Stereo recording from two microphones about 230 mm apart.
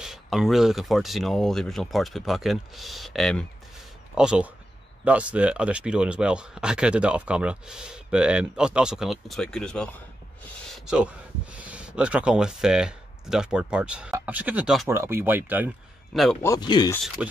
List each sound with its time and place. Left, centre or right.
0.0 s speech: centre
16.1 s a man's voice: centre
16.4 s speech: centre
17.2 s speech: centre